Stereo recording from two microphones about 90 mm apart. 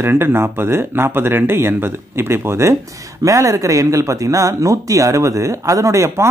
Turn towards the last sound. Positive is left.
turn(degrees=-30)  # may be behind; listen again after turning